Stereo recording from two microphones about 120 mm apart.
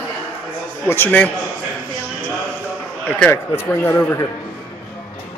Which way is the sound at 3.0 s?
15° left (ahead or behind).